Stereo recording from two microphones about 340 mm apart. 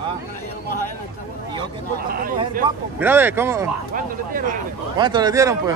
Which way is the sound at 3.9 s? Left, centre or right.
Right.